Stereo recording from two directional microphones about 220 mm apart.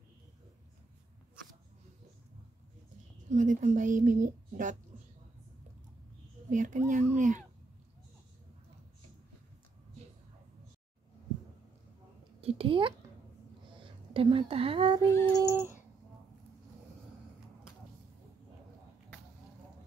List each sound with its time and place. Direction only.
3.3 s a woman's voice: 35° right (ahead or behind)
6.5 s a woman's voice: 35° right (ahead or behind)
12.4 s a woman's voice: 25° right (ahead or behind)
15.0 s child singing: 15° left (ahead or behind)
15.4 s a sound: 10° right (ahead or behind)